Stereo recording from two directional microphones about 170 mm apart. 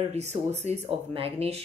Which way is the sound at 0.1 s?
40° right (ahead or behind).